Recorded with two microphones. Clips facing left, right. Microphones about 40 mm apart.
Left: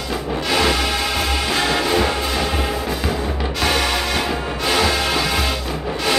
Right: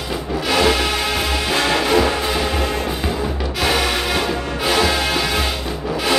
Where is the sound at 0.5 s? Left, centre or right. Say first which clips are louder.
Right 2 dB; centre.